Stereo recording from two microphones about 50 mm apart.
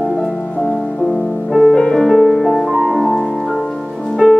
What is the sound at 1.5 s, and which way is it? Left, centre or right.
Music, centre.